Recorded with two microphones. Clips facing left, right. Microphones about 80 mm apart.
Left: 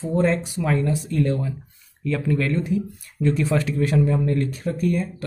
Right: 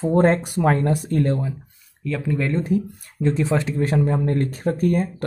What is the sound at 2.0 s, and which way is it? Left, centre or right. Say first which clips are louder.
Speech: left 1 dB; centre.